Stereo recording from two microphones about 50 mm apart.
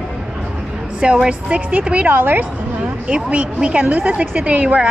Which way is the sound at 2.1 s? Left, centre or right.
Right.